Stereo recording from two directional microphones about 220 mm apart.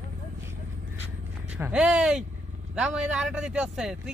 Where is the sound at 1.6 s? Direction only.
5° right (ahead or behind).